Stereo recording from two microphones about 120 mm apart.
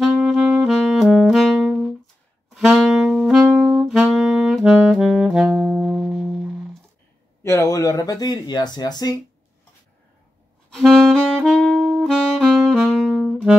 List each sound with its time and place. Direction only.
0.0 s saxophone: 5° right (ahead or behind)
7.4 s speech: 25° left (ahead or behind)
10.7 s saxophone: centre (ahead or behind)